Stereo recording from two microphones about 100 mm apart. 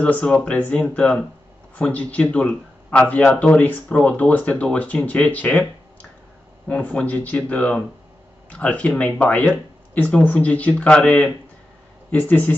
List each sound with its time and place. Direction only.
0.0 s speech: 10° left (ahead or behind)
6.7 s speech: 15° left (ahead or behind)